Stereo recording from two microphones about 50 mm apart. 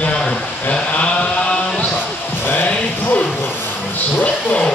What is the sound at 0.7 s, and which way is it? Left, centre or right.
Mantra, left.